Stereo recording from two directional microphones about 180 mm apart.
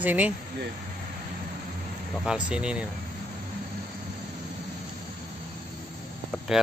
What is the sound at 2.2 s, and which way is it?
Speech, 5° right (ahead or behind).